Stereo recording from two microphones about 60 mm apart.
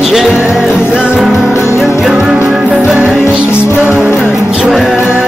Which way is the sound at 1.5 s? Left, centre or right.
Left.